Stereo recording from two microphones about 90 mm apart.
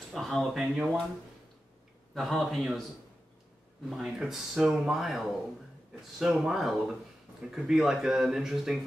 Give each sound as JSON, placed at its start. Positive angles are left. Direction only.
{"t": 0.1, "sound": "speech", "side_deg": 5}
{"t": 2.1, "sound": "speech", "side_deg": 0}
{"t": 3.9, "sound": "speech", "side_deg": -5}